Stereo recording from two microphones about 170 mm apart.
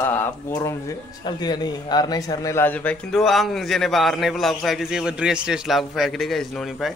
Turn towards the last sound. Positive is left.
turn(degrees=0)  # may be behind; listen again after turning